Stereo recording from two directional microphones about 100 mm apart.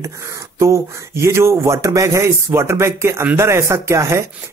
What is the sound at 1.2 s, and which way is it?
Speech, 30° right (ahead or behind).